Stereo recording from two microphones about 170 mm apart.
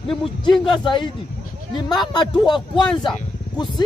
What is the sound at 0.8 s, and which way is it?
Speech, 30° left (ahead or behind).